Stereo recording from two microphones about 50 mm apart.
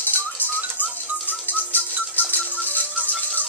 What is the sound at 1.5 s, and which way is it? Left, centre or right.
Rattle, left.